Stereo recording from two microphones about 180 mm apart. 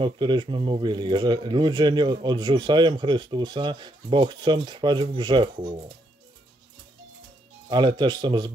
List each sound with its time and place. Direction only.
0.0 s speech: 25° right (ahead or behind)
7.7 s speech: 25° right (ahead or behind)